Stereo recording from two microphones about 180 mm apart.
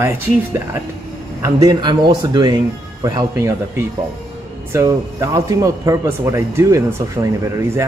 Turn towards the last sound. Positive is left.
turn(degrees=-15)  # may be behind; listen again after turning